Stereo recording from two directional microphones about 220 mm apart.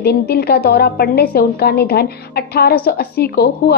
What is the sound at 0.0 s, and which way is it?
A woman's voice, 45° left (ahead or behind).